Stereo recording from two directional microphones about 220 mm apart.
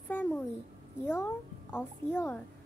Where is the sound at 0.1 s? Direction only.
10° left (ahead or behind).